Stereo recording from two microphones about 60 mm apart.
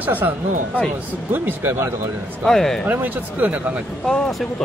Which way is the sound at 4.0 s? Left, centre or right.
Centre.